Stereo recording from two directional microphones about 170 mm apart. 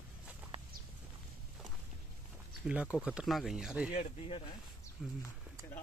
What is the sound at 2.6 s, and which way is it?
Speech, 5° right (ahead or behind).